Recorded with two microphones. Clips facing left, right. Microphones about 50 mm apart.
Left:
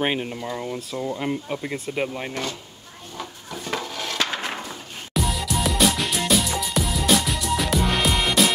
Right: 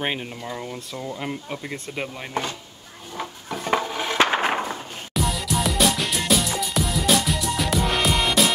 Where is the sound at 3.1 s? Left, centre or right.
Right.